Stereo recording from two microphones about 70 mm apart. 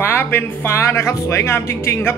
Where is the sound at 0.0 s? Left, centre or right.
Left.